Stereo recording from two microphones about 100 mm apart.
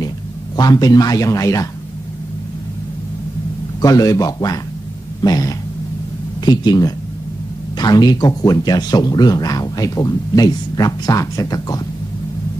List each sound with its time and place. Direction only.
0.6 s speech: 40° left (ahead or behind)
3.8 s speech: 35° left (ahead or behind)